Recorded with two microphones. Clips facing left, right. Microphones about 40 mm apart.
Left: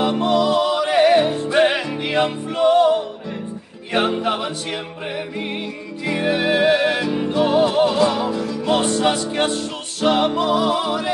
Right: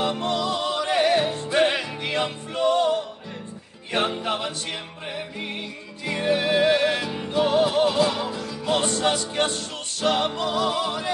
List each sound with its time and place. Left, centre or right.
0.0 s music: centre
6.2 s music: centre